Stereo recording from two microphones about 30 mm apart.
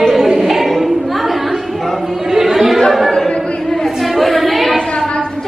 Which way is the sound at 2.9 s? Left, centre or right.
Centre.